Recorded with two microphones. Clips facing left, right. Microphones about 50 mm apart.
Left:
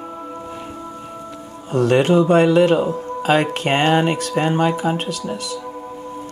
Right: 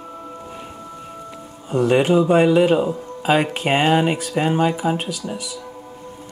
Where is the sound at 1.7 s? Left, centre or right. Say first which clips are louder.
Left 1 dB; centre.